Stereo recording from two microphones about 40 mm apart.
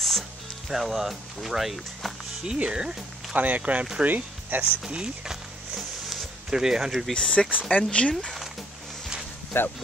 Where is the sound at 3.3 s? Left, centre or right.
Right.